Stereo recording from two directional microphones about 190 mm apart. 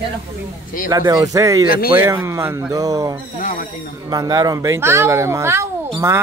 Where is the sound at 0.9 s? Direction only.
20° right (ahead or behind).